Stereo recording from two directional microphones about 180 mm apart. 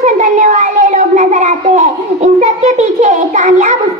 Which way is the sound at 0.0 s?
45° right (ahead or behind).